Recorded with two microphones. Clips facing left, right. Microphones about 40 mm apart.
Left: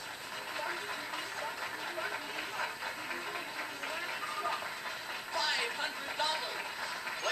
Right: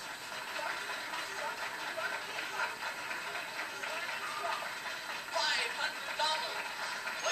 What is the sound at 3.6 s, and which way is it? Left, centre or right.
Music, centre.